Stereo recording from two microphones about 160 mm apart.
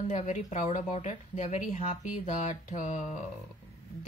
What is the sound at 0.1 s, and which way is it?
Speech, 45° left (ahead or behind).